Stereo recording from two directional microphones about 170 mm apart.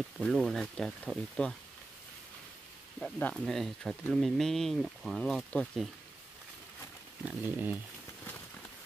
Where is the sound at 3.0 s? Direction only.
5° left (ahead or behind).